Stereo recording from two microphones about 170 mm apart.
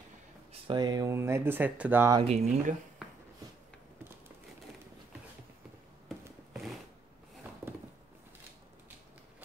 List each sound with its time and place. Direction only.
0.5 s speech: 25° right (ahead or behind); by 2.1 s 10° right (ahead or behind)
2.2 s speech: 40° right (ahead or behind)